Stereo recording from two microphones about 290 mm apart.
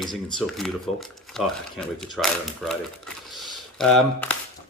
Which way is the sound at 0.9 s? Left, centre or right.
Left.